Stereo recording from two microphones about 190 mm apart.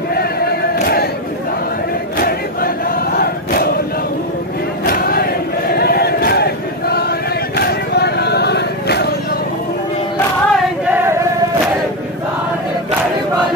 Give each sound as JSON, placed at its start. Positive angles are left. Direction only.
{"t": 0.1, "sound": "crowd", "side_deg": 55}
{"t": 2.1, "sound": "crowd", "side_deg": 50}
{"t": 4.8, "sound": "crowd", "side_deg": 50}
{"t": 10.5, "sound": "choir", "side_deg": -10}